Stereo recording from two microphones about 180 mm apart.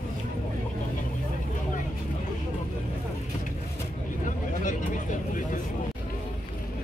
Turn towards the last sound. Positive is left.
turn(degrees=45)  # may be behind; listen again after turning